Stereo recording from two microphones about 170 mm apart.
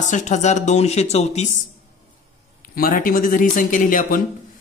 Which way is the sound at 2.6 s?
60° left (ahead or behind).